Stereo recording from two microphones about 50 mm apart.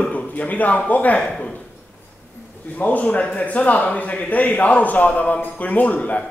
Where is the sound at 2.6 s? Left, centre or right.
Left.